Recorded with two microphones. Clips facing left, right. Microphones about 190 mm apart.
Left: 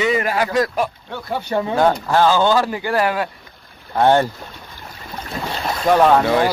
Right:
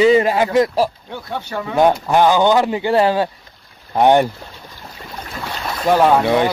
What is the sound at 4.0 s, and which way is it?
Speech, 15° right (ahead or behind).